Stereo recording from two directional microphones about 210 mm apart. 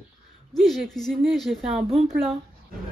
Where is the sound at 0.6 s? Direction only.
Centre (ahead or behind).